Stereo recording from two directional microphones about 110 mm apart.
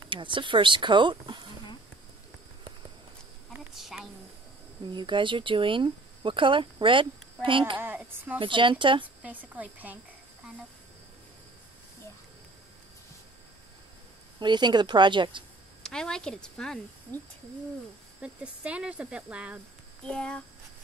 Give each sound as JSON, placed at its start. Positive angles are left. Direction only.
{"t": 0.1, "sound": "speech", "side_deg": -50}
{"t": 3.7, "sound": "a woman's voice", "side_deg": 0}
{"t": 4.9, "sound": "speech", "side_deg": -45}
{"t": 7.7, "sound": "a sound", "side_deg": -20}
{"t": 8.4, "sound": "speech", "side_deg": -50}
{"t": 9.0, "sound": "a woman's voice", "side_deg": -15}
{"t": 14.4, "sound": "speech", "side_deg": -40}
{"t": 15.8, "sound": "speech", "side_deg": 5}
{"t": 18.2, "sound": "speech", "side_deg": -10}
{"t": 20.1, "sound": "speech", "side_deg": 10}